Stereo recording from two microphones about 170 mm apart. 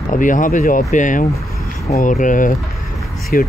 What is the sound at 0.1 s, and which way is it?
Speech, 50° left (ahead or behind).